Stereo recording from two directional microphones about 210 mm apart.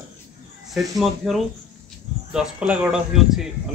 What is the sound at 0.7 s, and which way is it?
Speech, centre (ahead or behind).